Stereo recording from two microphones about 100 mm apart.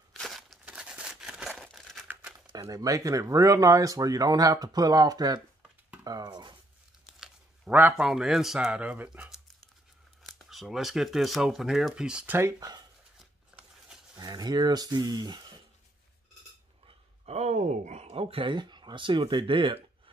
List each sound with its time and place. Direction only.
0.1 s crumpling: centre (ahead or behind)
2.6 s speech: 35° right (ahead or behind)
7.7 s speech: 15° right (ahead or behind)
10.2 s speech: centre (ahead or behind)
12.4 s speech: 30° right (ahead or behind)
14.1 s speech: 45° right (ahead or behind)
16.8 s speech: 90° right; by 19.8 s 60° right (ahead or behind)